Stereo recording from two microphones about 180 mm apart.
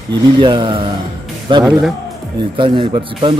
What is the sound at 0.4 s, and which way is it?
Speech, 25° right (ahead or behind).